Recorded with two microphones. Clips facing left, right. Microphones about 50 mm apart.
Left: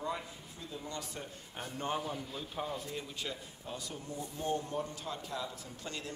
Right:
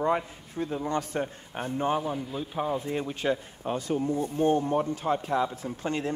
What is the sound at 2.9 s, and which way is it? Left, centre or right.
Speech, right.